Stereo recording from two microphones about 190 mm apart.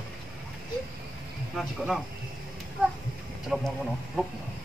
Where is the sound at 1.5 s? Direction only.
Centre (ahead or behind).